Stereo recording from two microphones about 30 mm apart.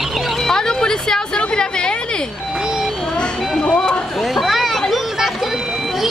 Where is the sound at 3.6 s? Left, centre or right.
Left.